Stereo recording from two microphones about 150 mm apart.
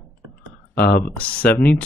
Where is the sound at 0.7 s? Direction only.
85° left.